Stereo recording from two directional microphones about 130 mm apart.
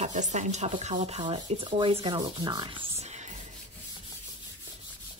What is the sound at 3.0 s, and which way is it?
Music, 65° right (ahead or behind).